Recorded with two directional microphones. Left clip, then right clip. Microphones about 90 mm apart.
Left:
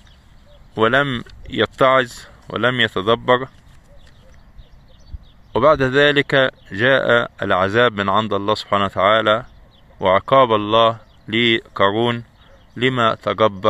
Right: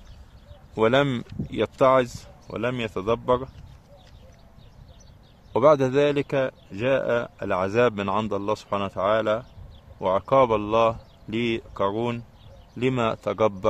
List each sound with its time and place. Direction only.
0.7 s speech: 5° left (ahead or behind)
2.8 s speech: 25° left (ahead or behind)
5.5 s speech: centre (ahead or behind)
6.1 s speech: 25° left (ahead or behind)
6.7 s speech: 40° left (ahead or behind)
7.5 s speech: 20° left (ahead or behind)
10.3 s speech: 15° left (ahead or behind)
11.8 s speech: 35° left (ahead or behind)
12.7 s speech: 10° left (ahead or behind)